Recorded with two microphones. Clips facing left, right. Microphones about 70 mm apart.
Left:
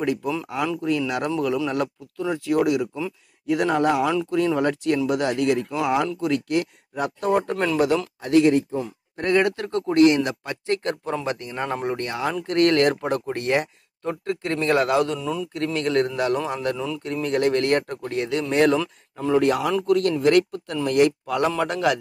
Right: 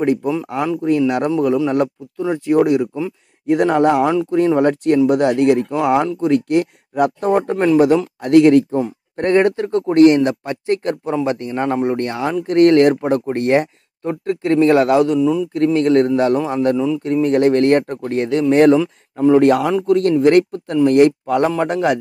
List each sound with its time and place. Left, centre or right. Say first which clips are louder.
0.0 s speech: right 7 dB; right
1.3 s speech: right 7 dB; right
4.1 s speech: right 6 dB; right
4.6 s speech: right 8 dB; right
8.2 s speech: right 7 dB; right
11.7 s speech: right 7 dB; centre
12.0 s speech: right 6 dB; right
15.1 s speech: right 11 dB; centre
15.5 s speech: right 7 dB; right
16.7 s speech: right 10 dB; centre
17.0 s speech: right 6 dB; right
19.4 s speech: right 7 dB; right